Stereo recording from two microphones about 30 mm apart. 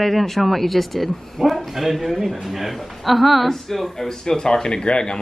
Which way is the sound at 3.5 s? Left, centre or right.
Centre.